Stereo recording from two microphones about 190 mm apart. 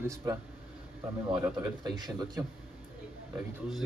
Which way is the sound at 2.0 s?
20° right (ahead or behind).